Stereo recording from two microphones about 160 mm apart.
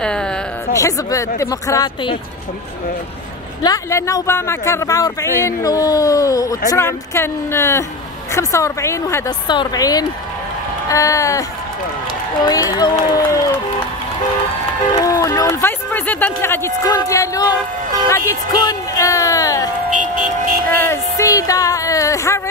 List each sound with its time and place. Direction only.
0.0 s a sound: 5° left (ahead or behind)
0.7 s speech: 20° left (ahead or behind)
3.6 s speech: 20° left (ahead or behind)
12.4 s speech: 25° left (ahead or behind)
15.0 s speech: 20° left (ahead or behind)
19.9 s vehicle: 55° right (ahead or behind)
20.8 s speech: 20° left (ahead or behind)